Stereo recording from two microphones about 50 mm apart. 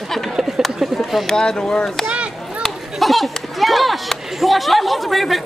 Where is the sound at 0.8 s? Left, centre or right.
Centre.